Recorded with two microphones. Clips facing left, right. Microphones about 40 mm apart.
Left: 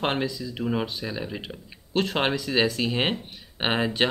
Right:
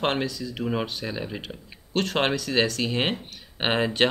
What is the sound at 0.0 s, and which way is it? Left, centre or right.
Speech, centre.